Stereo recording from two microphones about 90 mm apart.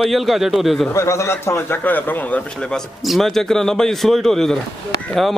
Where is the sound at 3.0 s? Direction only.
Centre (ahead or behind).